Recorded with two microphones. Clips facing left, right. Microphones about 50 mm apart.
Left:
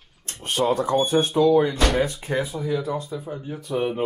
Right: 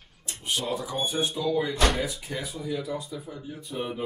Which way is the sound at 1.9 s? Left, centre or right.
Left.